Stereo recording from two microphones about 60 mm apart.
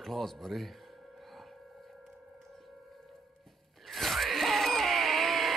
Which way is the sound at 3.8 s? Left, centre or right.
Centre.